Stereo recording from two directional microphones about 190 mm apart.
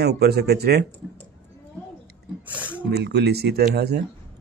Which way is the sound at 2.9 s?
60° right (ahead or behind).